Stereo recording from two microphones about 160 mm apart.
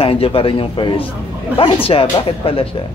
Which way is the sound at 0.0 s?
35° left (ahead or behind).